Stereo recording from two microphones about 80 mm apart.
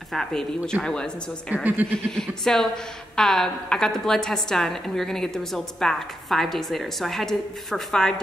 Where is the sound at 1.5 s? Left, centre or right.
Right.